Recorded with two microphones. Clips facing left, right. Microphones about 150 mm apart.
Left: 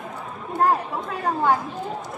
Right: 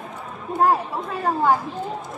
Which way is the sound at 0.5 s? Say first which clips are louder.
Right 2 dB; 5° right (ahead or behind).